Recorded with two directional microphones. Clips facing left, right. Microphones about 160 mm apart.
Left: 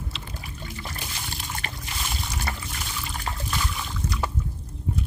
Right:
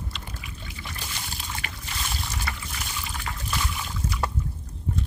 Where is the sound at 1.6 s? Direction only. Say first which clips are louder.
Left 3 dB; 35° left (ahead or behind).